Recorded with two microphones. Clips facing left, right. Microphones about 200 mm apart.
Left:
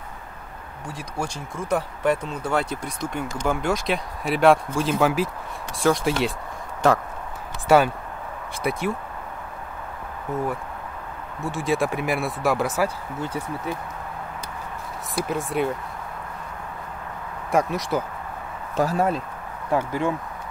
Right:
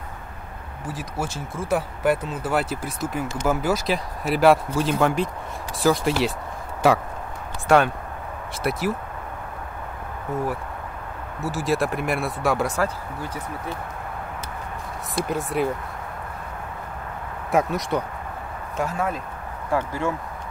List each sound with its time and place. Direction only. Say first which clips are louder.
0.8 s speech: right 1 dB; centre (ahead or behind)
7.6 s speech: left 1 dB; 5° left (ahead or behind)
10.3 s speech: even; centre (ahead or behind)
15.1 s speech: even; centre (ahead or behind)
17.5 s speech: even; centre (ahead or behind)
18.8 s speech: left 4 dB; 35° left (ahead or behind)
19.7 s speech: left 1 dB; 15° left (ahead or behind)